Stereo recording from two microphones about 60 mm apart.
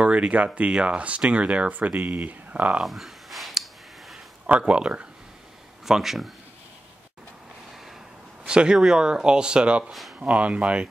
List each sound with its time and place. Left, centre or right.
0.0 s speech: right
2.8 s a sound: centre
4.5 s speech: centre
5.9 s speech: centre
8.5 s speech: centre